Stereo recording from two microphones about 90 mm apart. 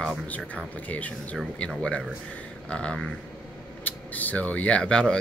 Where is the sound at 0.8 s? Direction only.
15° left (ahead or behind).